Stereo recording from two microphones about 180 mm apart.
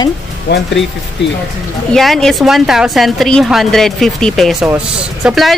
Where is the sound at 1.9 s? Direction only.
Centre (ahead or behind).